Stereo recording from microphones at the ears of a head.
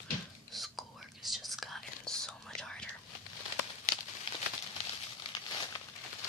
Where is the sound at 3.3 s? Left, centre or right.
Left.